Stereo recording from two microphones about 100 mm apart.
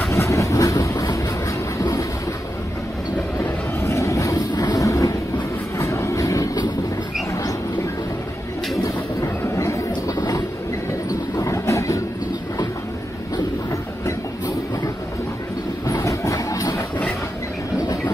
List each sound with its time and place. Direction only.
0.1 s train: 30° left (ahead or behind)
3.4 s vehicle: 30° left (ahead or behind)
5.8 s train: 30° left (ahead or behind)
9.4 s train: 30° left (ahead or behind)
11.1 s vehicle: 30° left (ahead or behind)
15.9 s a sound: 30° left (ahead or behind)
17.7 s train: 30° left (ahead or behind)